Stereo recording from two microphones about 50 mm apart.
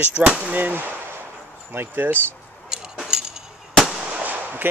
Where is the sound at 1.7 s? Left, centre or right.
Right.